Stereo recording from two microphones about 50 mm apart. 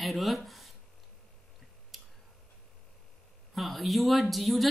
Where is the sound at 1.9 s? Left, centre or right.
Centre.